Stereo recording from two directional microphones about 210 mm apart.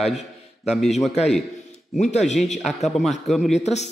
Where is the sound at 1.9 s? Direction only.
35° left (ahead or behind).